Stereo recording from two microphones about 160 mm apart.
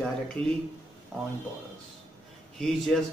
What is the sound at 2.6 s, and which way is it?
Speech, 5° left (ahead or behind).